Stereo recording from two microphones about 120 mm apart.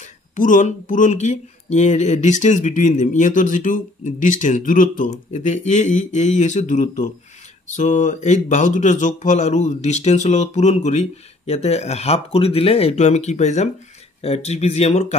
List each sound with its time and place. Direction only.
0.0 s speech: 90° left; by 13.7 s 75° left (ahead or behind)
14.2 s speech: 60° left (ahead or behind)